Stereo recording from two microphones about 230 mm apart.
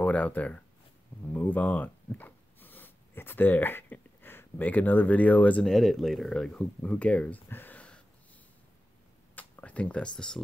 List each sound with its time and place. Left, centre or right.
0.0 s speech: centre
9.3 s speech: centre